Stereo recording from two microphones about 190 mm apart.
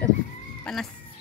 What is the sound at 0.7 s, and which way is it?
Chicken, 5° left (ahead or behind).